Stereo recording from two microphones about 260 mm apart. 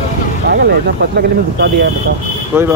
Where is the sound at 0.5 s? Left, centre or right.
Right.